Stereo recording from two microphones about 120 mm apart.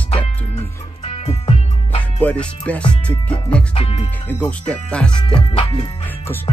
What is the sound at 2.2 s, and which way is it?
Speech, 10° left (ahead or behind).